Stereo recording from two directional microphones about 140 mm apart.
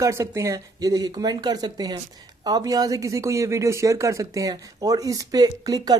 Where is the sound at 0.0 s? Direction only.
20° right (ahead or behind).